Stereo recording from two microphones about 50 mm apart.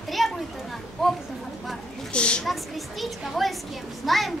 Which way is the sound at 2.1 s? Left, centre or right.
Left.